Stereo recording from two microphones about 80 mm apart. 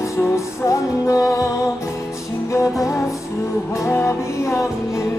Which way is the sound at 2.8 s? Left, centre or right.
Left.